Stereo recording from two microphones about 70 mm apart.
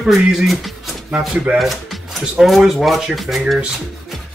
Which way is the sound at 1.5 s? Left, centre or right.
Centre.